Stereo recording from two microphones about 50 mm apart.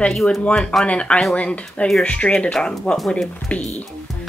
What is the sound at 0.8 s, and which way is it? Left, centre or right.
Speech, left.